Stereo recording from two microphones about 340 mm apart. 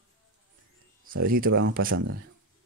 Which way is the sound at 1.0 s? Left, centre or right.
Right.